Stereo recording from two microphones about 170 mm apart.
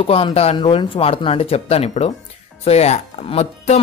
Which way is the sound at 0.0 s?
35° left (ahead or behind).